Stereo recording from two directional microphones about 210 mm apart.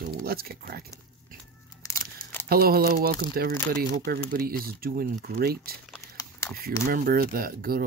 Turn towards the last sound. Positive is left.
turn(degrees=-45)  # may be behind; listen again after turning